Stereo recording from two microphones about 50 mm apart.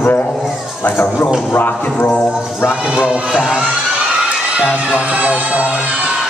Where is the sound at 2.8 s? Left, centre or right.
Centre.